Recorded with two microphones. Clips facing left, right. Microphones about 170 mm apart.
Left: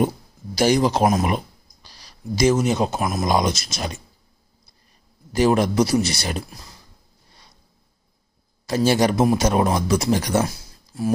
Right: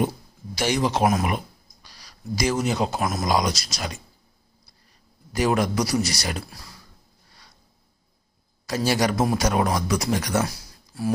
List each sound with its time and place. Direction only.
0.6 s speech: 35° left (ahead or behind)
5.3 s speech: 30° left (ahead or behind)
8.6 s speech: 25° left (ahead or behind)